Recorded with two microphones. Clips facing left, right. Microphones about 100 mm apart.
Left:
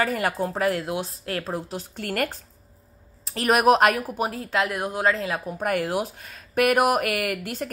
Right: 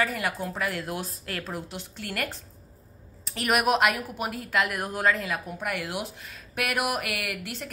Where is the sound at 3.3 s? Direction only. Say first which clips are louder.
Left 6 dB; 40° left (ahead or behind).